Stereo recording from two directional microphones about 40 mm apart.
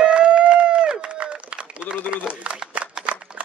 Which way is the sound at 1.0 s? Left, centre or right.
Right.